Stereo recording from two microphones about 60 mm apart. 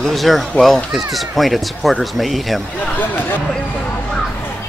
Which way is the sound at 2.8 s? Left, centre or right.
Left.